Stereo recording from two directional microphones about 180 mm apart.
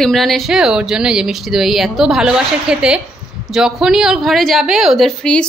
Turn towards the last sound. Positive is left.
turn(degrees=5)  # may be behind; listen again after turning